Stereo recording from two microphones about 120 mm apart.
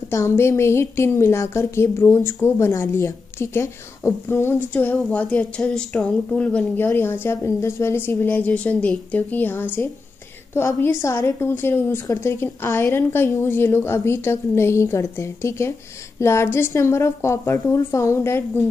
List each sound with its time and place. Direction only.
0.1 s a woman's voice: 20° left (ahead or behind)